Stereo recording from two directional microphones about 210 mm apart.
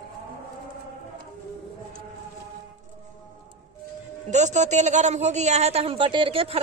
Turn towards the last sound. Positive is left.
turn(degrees=-25)  # may be behind; listen again after turning